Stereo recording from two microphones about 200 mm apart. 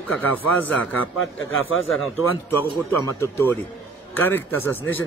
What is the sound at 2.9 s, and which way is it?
Speech, 10° left (ahead or behind).